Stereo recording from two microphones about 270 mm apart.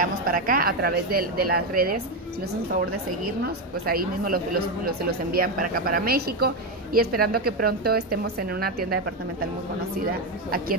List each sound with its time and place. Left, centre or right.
0.0 s speech: right
3.8 s speech: right